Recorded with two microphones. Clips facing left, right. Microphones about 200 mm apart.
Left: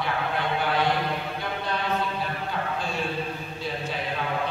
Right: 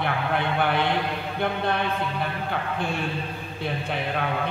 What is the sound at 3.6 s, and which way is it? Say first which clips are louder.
Mantra: right 2 dB; 60° right (ahead or behind).